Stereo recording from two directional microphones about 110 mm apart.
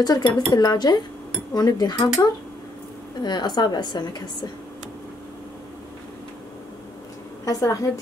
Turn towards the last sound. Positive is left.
turn(degrees=30)  # may be behind; listen again after turning